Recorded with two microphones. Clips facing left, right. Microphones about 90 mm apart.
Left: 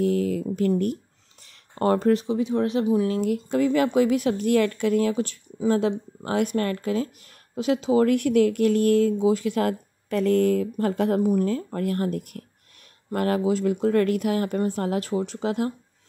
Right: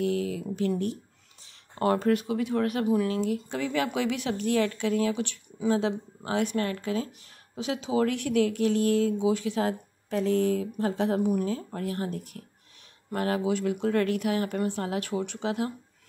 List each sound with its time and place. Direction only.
0.0 s speech: 40° left (ahead or behind); by 3.1 s 25° left (ahead or behind)
3.1 s a woman's voice: 40° left (ahead or behind)